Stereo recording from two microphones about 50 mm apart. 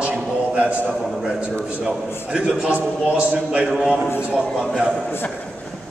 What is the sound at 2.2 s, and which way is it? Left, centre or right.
A man's voice, right.